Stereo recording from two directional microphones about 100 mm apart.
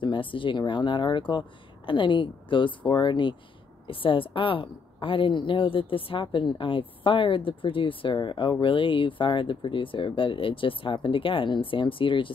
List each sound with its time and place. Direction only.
0.0 s speech: 55° left (ahead or behind)